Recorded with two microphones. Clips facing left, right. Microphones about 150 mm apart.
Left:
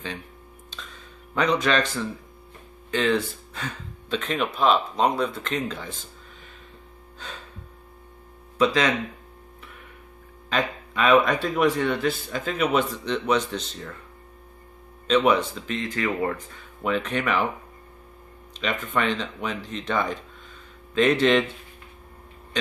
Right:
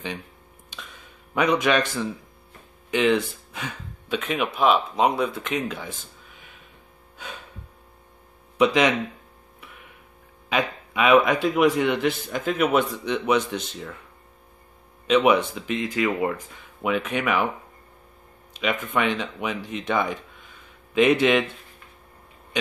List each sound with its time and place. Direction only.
0.7 s a sound: 10° right (ahead or behind)
1.3 s a man's voice: 10° right (ahead or behind)
8.5 s a man's voice: 15° right (ahead or behind)
10.5 s a man's voice: 10° right (ahead or behind)
15.0 s a man's voice: 10° right (ahead or behind)
18.5 s a man's voice: 10° right (ahead or behind)